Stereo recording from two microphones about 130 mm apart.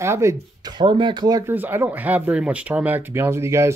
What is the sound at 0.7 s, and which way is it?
Speech, 40° right (ahead or behind).